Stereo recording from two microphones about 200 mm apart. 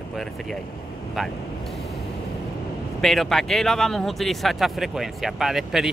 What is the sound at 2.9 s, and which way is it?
Speech, centre (ahead or behind).